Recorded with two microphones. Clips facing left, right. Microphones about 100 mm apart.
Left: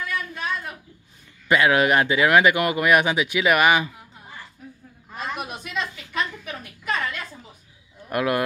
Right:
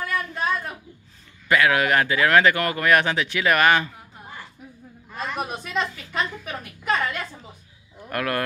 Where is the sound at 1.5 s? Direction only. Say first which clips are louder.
Left 1 dB; 20° left (ahead or behind).